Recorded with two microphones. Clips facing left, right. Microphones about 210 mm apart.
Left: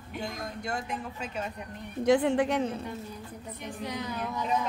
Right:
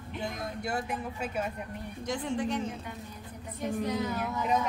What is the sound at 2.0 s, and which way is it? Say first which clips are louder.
Speech: left 9 dB; 65° left (ahead or behind).